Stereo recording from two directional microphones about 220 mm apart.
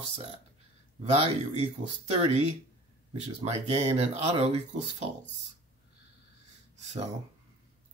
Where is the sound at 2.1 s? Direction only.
30° right (ahead or behind).